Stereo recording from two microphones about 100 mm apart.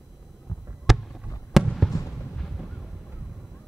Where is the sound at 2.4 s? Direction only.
Centre (ahead or behind).